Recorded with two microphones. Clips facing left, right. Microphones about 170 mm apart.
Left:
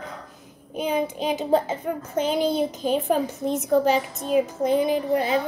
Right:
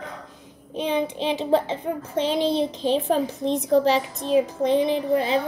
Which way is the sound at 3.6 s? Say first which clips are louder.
Right 1 dB; 30° right (ahead or behind).